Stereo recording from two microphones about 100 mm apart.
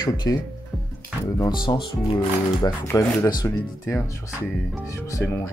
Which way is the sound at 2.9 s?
25° left (ahead or behind).